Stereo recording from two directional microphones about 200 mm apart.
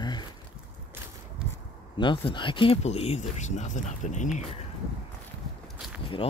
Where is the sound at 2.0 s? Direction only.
25° left (ahead or behind).